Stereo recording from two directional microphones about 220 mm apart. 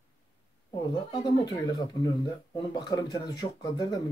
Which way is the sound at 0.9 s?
20° left (ahead or behind).